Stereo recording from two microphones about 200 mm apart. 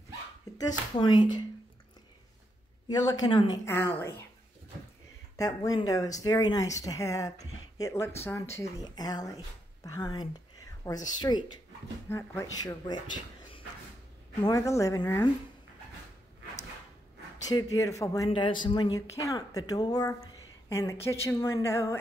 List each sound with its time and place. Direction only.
0.6 s speech: 20° left (ahead or behind)
2.9 s speech: 20° left (ahead or behind)
5.3 s speech: 20° left (ahead or behind)
14.4 s speech: 15° left (ahead or behind)
17.5 s speech: 15° left (ahead or behind)